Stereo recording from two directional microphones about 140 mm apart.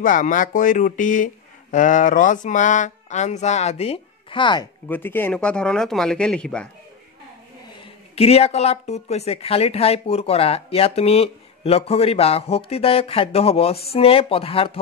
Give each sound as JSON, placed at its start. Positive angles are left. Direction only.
{"t": 0.0, "sound": "speech", "side_deg": 70}
{"t": 4.8, "sound": "speech", "side_deg": 15}
{"t": 7.7, "sound": "speech", "side_deg": 45}